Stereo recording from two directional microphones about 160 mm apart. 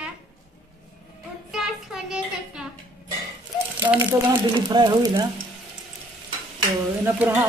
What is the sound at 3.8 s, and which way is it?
Crumpling, 15° right (ahead or behind).